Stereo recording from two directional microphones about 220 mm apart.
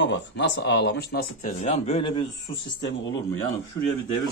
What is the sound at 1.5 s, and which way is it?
A man's voice, 30° left (ahead or behind).